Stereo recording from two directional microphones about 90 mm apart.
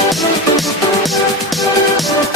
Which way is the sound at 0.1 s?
Centre (ahead or behind).